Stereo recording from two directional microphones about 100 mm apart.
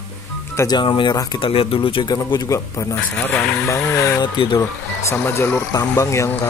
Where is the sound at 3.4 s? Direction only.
5° left (ahead or behind).